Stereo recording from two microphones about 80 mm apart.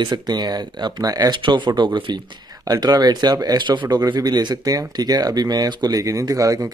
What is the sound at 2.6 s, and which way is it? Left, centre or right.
Speech, right.